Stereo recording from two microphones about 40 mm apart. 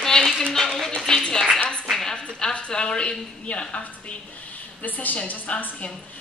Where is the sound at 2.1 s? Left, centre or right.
Left.